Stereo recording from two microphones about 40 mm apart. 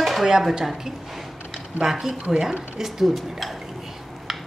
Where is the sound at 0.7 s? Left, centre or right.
Centre.